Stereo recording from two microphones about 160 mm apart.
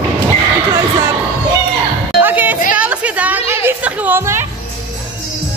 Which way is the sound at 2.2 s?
10° right (ahead or behind).